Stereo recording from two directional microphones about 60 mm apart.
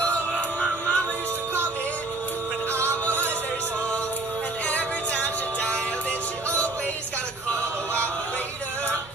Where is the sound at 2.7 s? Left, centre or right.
Right.